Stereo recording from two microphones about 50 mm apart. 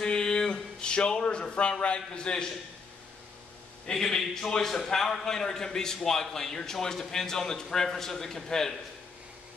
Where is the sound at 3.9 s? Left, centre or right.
Centre.